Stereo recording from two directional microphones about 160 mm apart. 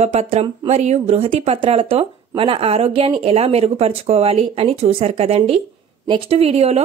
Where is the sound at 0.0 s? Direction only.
40° right (ahead or behind).